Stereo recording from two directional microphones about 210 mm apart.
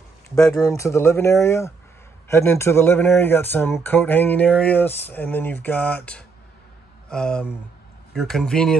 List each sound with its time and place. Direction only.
0.6 s speech: 15° left (ahead or behind)